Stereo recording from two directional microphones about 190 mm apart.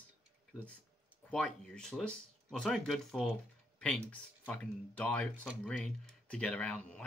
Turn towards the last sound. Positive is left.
turn(degrees=5)  # may be behind; listen again after turning